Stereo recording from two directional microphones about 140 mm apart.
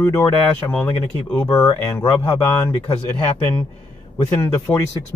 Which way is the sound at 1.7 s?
25° left (ahead or behind).